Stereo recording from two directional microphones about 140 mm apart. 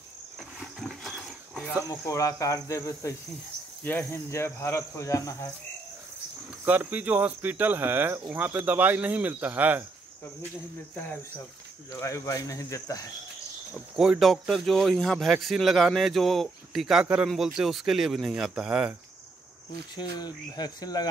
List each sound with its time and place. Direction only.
0.4 s a sound: centre (ahead or behind)
1.9 s speech: 20° left (ahead or behind)
6.6 s speech: 15° right (ahead or behind)
11.9 s speech: 20° left (ahead or behind)
13.9 s speech: 5° right (ahead or behind)
19.7 s speech: 30° left (ahead or behind)